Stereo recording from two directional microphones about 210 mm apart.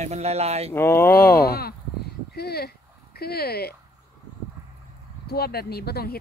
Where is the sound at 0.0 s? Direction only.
30° right (ahead or behind).